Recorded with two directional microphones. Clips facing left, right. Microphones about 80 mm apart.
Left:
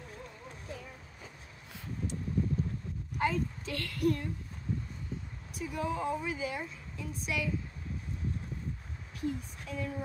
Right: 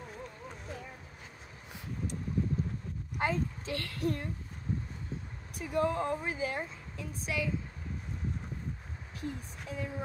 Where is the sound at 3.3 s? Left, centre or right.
Right.